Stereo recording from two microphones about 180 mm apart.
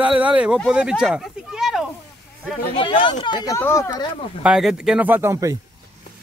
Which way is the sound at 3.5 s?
15° left (ahead or behind).